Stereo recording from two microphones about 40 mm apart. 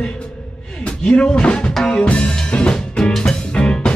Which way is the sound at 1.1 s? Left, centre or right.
Left.